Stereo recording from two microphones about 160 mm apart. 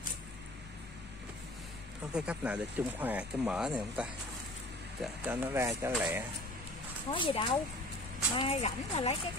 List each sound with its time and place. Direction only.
2.1 s speech: 5° right (ahead or behind)
5.2 s speech: 15° right (ahead or behind)
7.1 s speech: 35° left (ahead or behind)